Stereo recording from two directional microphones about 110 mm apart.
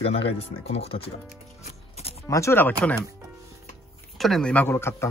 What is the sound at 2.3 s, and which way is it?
Speech, 25° left (ahead or behind).